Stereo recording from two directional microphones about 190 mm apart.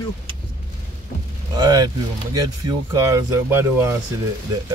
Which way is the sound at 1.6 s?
20° right (ahead or behind).